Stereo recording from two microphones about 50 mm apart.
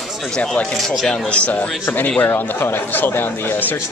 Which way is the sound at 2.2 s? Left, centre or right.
Left.